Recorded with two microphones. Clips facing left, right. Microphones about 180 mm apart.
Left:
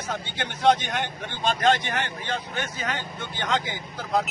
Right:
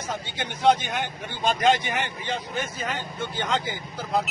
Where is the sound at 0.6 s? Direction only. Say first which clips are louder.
Even; centre (ahead or behind).